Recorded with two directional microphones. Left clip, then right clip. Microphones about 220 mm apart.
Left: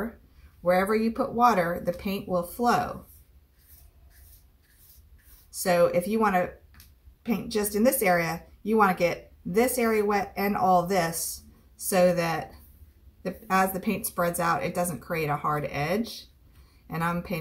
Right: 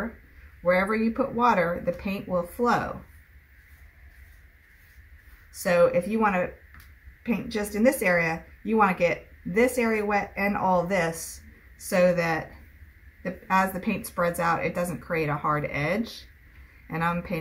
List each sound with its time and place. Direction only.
0.7 s a woman's voice: 10° left (ahead or behind)
5.6 s a woman's voice: 10° left (ahead or behind)